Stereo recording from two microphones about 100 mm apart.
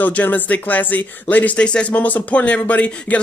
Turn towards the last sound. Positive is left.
turn(degrees=15)  # may be behind; listen again after turning